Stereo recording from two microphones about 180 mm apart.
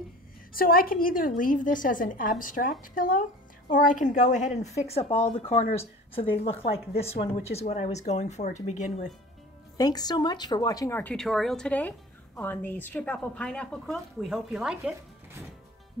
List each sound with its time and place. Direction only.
0.5 s a woman's voice: 55° left (ahead or behind)
9.8 s a woman's voice: 20° left (ahead or behind); by 15.0 s 5° right (ahead or behind)